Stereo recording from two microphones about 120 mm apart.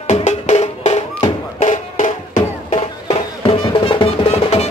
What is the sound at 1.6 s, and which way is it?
Music, 90° left.